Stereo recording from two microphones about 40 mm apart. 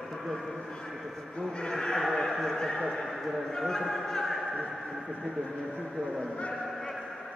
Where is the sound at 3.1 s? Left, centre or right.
Centre.